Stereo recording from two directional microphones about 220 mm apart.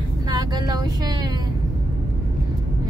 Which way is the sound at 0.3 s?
20° right (ahead or behind).